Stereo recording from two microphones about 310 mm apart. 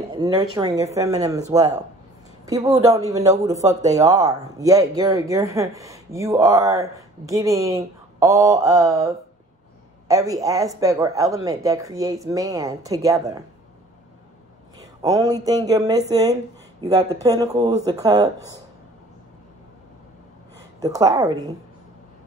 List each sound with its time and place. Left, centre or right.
0.1 s speech: centre
14.8 s speech: centre
20.8 s speech: centre